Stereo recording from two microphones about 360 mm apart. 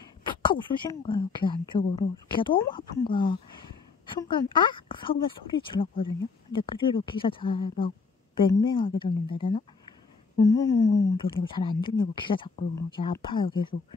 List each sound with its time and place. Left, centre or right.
0.3 s speech: centre
10.4 s speech: centre
10.9 s speech: left
11.1 s speech: centre